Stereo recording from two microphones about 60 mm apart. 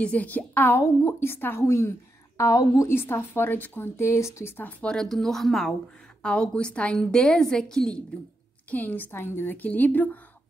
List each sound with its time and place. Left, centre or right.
0.0 s a woman's voice: left
1.6 s speech: left
2.5 s a woman's voice: left
2.9 s speech: left
4.0 s speech: left
4.6 s speech: left
4.8 s speech: centre
6.2 s a woman's voice: centre
8.6 s a woman's voice: left